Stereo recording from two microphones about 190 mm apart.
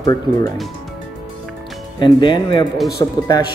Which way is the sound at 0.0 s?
20° left (ahead or behind).